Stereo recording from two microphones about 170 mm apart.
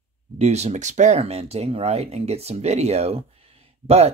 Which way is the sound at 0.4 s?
40° right (ahead or behind).